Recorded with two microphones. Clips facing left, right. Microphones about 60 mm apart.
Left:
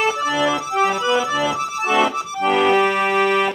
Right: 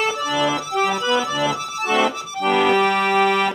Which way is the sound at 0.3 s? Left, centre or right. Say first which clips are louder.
Left 1 dB; centre.